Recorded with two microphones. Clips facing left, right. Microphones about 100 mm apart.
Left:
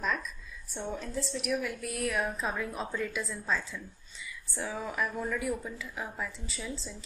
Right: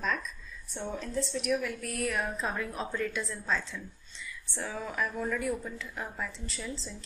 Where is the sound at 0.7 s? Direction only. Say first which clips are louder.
Right 1 dB; 5° left (ahead or behind).